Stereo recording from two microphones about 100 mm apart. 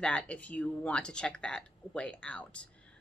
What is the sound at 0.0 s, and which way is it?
Speech, 10° left (ahead or behind).